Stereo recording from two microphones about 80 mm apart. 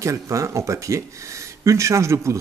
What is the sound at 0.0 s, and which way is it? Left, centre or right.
Speech, right.